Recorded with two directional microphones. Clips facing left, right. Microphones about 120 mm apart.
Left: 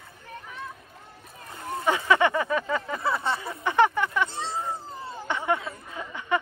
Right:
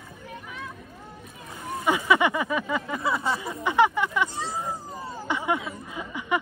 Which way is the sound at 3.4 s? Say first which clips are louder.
Even; 15° right (ahead or behind).